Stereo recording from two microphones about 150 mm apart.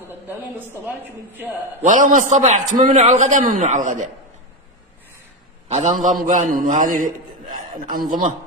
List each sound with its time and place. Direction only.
0.1 s a woman's voice: 15° right (ahead or behind)
2.0 s a man's voice: 55° right (ahead or behind)
5.7 s a man's voice: 50° right (ahead or behind)
6.0 s a man's voice: 60° right (ahead or behind)